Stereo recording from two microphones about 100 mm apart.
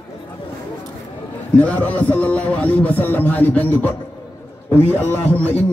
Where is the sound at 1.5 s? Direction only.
15° left (ahead or behind).